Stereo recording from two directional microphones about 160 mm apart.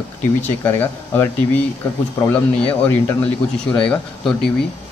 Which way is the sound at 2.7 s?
10° left (ahead or behind).